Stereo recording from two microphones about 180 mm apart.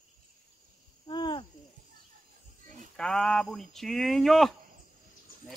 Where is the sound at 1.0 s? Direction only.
25° left (ahead or behind).